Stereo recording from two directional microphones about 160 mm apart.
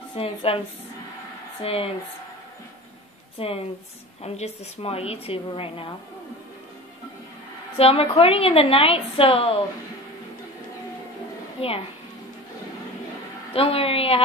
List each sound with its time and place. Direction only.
0.1 s a woman's voice: 35° left (ahead or behind)
1.6 s a woman's voice: 35° left (ahead or behind)
3.3 s a woman's voice: 35° left (ahead or behind)
7.7 s a woman's voice: 35° left (ahead or behind)
13.5 s a woman's voice: 35° left (ahead or behind)